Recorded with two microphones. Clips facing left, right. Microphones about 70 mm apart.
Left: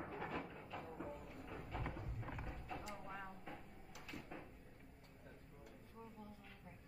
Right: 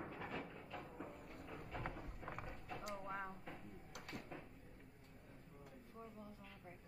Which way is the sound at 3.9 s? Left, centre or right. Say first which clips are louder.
Right 1 dB; right.